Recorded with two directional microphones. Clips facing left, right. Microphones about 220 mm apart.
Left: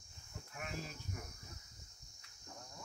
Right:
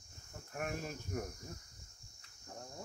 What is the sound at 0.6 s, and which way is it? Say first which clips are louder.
Speech: right 6 dB; 50° right (ahead or behind).